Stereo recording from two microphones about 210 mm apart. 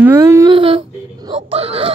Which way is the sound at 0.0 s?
15° right (ahead or behind).